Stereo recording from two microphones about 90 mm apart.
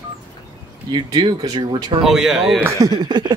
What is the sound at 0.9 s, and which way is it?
Speech, 55° right (ahead or behind).